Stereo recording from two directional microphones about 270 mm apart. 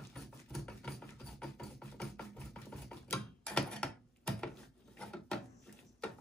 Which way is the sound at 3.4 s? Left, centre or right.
Centre.